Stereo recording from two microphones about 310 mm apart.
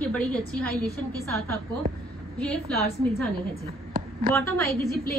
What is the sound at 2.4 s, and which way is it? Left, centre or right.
Speech, centre.